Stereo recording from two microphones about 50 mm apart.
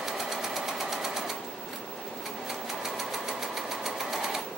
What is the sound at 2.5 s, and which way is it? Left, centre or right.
Sewing machine, centre.